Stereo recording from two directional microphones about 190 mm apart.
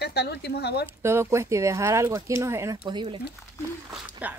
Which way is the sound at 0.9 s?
15° right (ahead or behind).